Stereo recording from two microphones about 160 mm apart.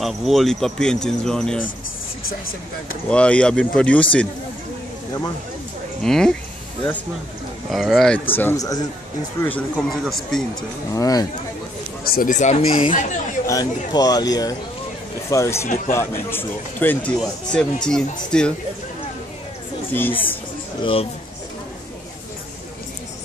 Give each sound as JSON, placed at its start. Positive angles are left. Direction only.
{"t": 0.0, "sound": "speech", "side_deg": 0}
{"t": 3.1, "sound": "speech", "side_deg": 5}
{"t": 6.0, "sound": "speech", "side_deg": 5}
{"t": 7.7, "sound": "speech", "side_deg": 0}
{"t": 8.4, "sound": "speech", "side_deg": 15}
{"t": 9.4, "sound": "speech", "side_deg": 10}
{"t": 10.9, "sound": "speech", "side_deg": 20}
{"t": 12.0, "sound": "speech", "side_deg": 65}
{"t": 13.5, "sound": "speech", "side_deg": 25}
{"t": 19.9, "sound": "speech", "side_deg": 10}
{"t": 20.8, "sound": "speech", "side_deg": 35}